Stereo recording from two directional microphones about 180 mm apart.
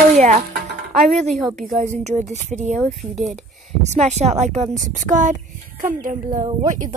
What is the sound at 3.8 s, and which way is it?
Speech, 40° right (ahead or behind).